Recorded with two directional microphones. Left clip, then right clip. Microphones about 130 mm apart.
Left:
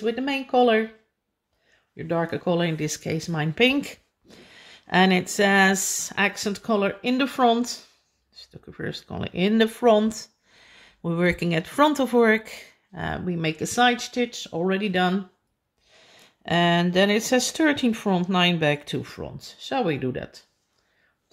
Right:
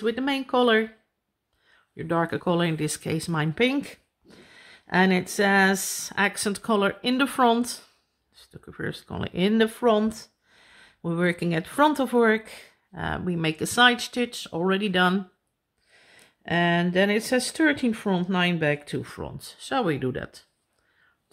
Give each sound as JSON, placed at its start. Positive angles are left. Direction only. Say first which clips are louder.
{"t": 0.0, "sound": "speech", "louder": "even", "side_deg": -45}
{"t": 2.0, "sound": "speech", "louder": "even", "side_deg": -40}
{"t": 3.5, "sound": "speech", "louder": "left 5 dB", "side_deg": -15}
{"t": 6.3, "sound": "speech", "louder": "even", "side_deg": -35}
{"t": 13.2, "sound": "speech", "louder": "even", "side_deg": -35}
{"t": 15.9, "sound": "speech", "louder": "left 2 dB", "side_deg": -10}
{"t": 19.0, "sound": "speech", "louder": "even", "side_deg": -35}